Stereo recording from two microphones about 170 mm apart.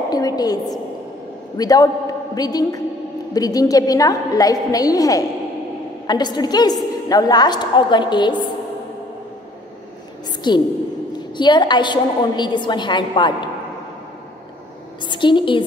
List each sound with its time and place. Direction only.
0.1 s a woman's voice: 20° left (ahead or behind)
10.4 s a woman's voice: 25° left (ahead or behind)
15.0 s a woman's voice: 30° left (ahead or behind)